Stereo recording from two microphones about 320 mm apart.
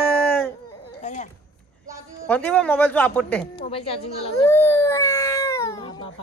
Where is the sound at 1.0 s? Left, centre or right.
Left.